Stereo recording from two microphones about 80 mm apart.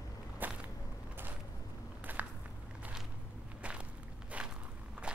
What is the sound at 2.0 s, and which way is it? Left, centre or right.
Walk, right.